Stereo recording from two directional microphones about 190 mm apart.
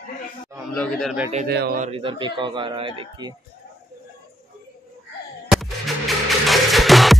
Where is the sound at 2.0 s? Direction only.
25° right (ahead or behind).